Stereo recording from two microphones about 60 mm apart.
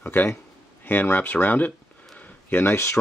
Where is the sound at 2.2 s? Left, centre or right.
Left.